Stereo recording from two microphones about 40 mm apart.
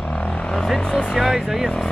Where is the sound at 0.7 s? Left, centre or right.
Centre.